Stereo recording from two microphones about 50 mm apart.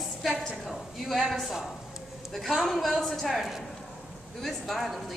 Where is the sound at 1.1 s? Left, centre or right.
Centre.